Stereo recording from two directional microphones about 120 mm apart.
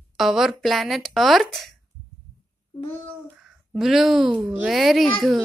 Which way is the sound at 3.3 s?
5° right (ahead or behind).